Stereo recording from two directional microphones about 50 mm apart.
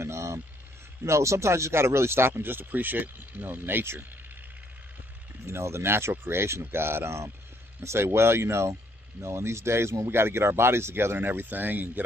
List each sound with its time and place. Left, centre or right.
0.0 s vehicle: right
1.0 s speech: right
5.5 s speech: right